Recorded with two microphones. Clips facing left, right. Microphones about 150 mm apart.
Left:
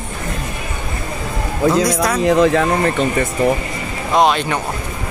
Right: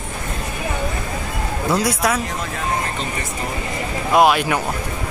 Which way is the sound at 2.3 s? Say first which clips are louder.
Left 12 dB; 90° left.